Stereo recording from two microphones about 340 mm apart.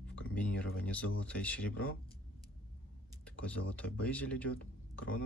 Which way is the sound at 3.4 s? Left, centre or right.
Centre.